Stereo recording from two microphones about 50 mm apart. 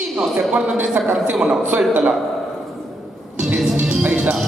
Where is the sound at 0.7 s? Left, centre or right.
Right.